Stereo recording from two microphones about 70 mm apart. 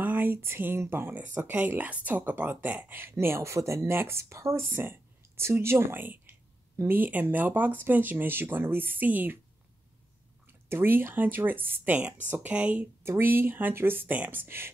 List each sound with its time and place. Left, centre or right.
0.0 s speech: right
1.1 s speech: right
3.9 s speech: right
10.7 s speech: right
13.0 s speech: right